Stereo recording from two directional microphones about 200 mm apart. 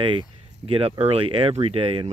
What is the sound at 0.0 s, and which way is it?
Speech, 25° right (ahead or behind).